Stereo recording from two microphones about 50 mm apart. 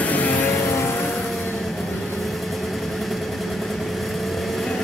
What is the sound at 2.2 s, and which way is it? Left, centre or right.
Vehicle, centre.